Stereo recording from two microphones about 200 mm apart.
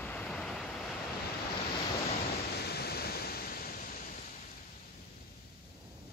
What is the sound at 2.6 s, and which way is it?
Pink noise, 50° left (ahead or behind).